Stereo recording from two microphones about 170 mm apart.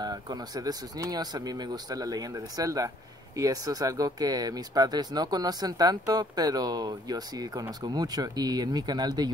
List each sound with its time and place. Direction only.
0.0 s speech: 25° right (ahead or behind)